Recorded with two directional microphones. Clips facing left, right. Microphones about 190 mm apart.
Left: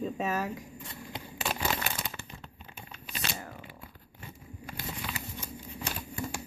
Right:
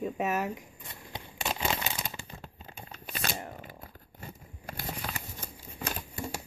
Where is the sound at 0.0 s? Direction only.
15° right (ahead or behind).